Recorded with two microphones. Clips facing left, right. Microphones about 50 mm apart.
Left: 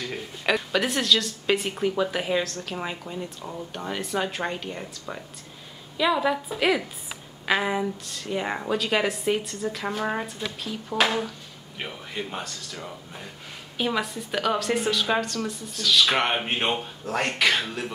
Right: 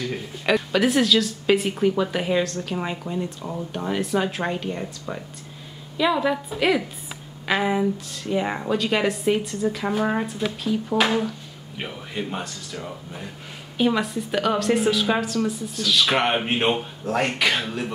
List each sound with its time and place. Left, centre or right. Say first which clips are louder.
0.0 s a woman's voice: right 2 dB; centre